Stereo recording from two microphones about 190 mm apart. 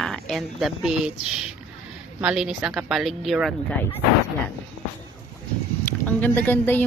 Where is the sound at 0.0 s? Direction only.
Centre (ahead or behind).